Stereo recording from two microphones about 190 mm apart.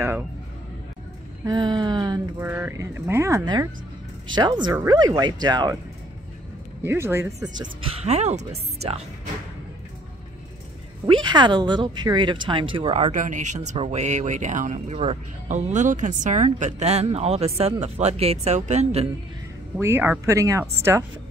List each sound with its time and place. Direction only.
1.4 s speech: 20° right (ahead or behind)
2.4 s speech: 10° right (ahead or behind)
6.8 s speech: 10° right (ahead or behind); by 9.0 s 35° right (ahead or behind)
11.1 s speech: 25° right (ahead or behind)
19.8 s speech: 10° right (ahead or behind)